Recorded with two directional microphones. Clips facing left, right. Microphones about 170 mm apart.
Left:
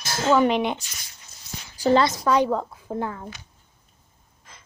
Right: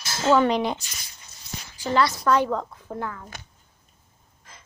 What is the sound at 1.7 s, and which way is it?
Speech, 35° left (ahead or behind).